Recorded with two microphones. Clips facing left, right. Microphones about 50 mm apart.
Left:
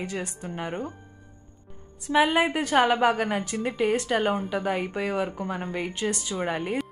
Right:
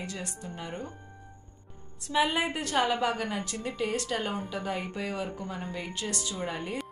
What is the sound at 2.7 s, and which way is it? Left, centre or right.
Speech, left.